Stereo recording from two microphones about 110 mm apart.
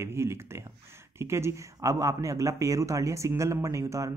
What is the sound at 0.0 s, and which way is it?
Speech, 25° right (ahead or behind).